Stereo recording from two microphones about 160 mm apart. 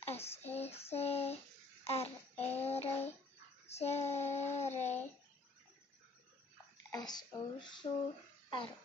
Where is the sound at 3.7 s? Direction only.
40° left (ahead or behind).